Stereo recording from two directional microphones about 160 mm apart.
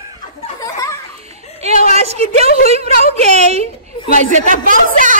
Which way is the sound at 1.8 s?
40° right (ahead or behind).